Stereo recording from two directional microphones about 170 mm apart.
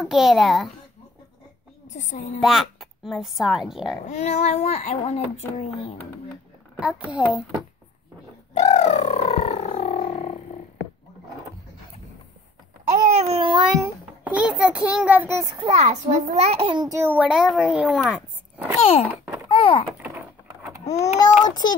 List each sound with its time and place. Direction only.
0.0 s a woman's voice: centre (ahead or behind)
2.0 s a woman's voice: 45° left (ahead or behind)
2.4 s a woman's voice: centre (ahead or behind)
4.1 s speech: 45° left (ahead or behind)
6.8 s a child's voice: 5° right (ahead or behind)
8.5 s bird: 40° left (ahead or behind)
12.9 s babbling: 40° right (ahead or behind)
13.7 s a sound: 5° right (ahead or behind)
15.6 s a child's voice: 40° right (ahead or behind)
17.0 s speech: 10° right (ahead or behind)
19.0 s a sound: 10° right (ahead or behind)
19.5 s a sound: 30° left (ahead or behind)
21.5 s a child's voice: 25° left (ahead or behind)